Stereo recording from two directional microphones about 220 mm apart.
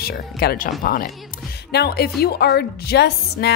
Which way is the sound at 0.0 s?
45° left (ahead or behind).